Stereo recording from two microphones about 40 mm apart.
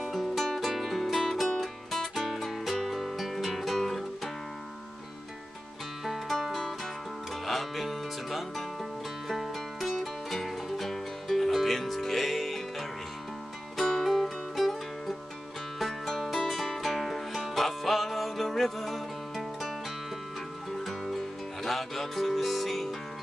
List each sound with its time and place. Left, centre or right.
0.1 s music: centre
6.0 s music: centre
20.7 s music: centre